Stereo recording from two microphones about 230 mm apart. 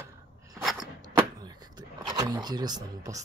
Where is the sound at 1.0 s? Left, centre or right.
Centre.